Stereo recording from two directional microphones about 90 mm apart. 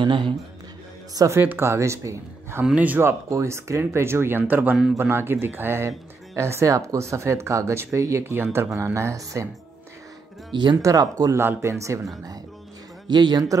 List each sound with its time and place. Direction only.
0.0 s a man's voice: 65° right (ahead or behind)
1.1 s speech: 35° right (ahead or behind)
1.4 s speech: 25° right (ahead or behind)
2.6 s speech: 15° right (ahead or behind); by 9.5 s 35° right (ahead or behind)
10.5 s speech: 60° right (ahead or behind)
10.8 s speech: 40° right (ahead or behind)
11.3 s speech: 30° right (ahead or behind)
13.1 s a man's voice: 55° right (ahead or behind)